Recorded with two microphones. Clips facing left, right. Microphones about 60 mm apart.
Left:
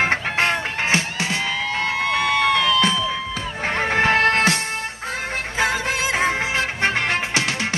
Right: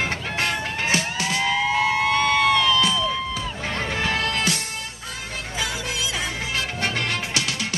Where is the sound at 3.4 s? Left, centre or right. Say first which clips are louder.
Left 4 dB; left.